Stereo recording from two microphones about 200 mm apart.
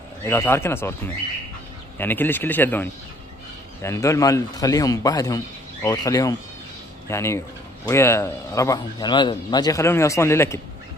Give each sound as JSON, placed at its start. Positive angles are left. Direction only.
{"t": 0.3, "sound": "speech", "side_deg": 10}